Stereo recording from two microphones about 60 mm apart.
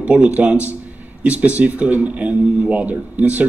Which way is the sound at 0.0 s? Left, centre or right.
Centre.